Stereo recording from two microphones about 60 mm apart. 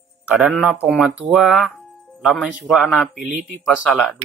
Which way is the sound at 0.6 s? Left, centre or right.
Right.